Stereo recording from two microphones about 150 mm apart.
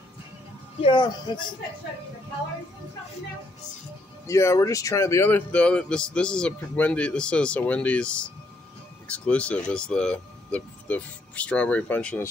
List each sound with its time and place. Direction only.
0.8 s speech: 30° left (ahead or behind)
4.3 s speech: 20° left (ahead or behind)